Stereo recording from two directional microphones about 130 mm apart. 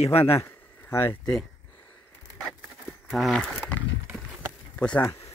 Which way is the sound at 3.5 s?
10° left (ahead or behind).